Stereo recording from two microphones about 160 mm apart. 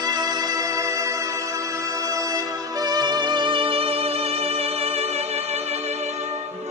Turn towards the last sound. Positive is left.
turn(degrees=-40)  # may be behind; listen again after turning